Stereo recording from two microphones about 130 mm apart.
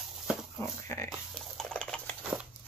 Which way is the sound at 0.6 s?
20° left (ahead or behind).